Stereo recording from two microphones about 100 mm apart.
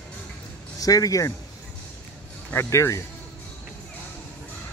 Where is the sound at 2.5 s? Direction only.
25° left (ahead or behind).